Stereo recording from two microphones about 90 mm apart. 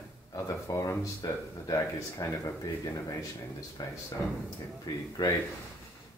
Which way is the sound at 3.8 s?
45° left (ahead or behind).